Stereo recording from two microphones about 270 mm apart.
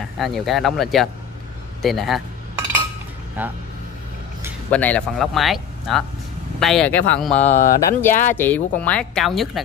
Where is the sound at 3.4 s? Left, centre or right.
Centre.